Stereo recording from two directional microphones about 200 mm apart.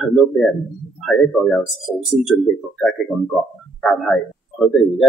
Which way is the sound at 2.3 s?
10° left (ahead or behind).